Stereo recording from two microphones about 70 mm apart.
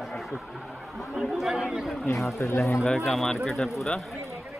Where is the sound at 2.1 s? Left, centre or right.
Left.